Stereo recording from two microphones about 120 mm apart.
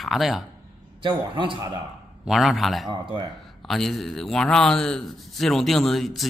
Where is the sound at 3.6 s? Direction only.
Centre (ahead or behind).